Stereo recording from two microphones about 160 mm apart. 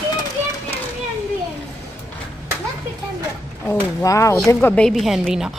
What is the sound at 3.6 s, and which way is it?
A woman's voice, 20° left (ahead or behind).